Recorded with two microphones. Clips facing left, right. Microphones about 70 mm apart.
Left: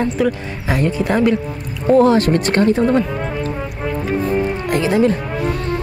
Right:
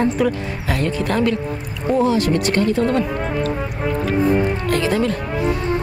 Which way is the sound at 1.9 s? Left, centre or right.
Left.